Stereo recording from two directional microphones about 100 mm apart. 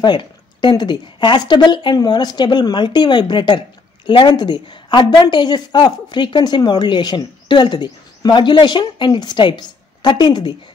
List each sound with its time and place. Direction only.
0.0 s speech: 50° left (ahead or behind)